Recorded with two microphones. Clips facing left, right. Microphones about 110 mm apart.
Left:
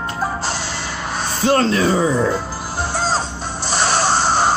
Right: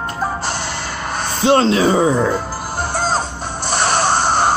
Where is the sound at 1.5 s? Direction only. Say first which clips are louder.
Right 3 dB; 30° right (ahead or behind).